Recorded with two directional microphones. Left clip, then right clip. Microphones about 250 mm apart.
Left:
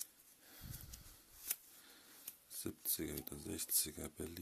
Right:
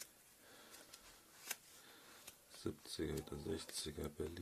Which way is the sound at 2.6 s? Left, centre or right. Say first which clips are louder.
Even; left.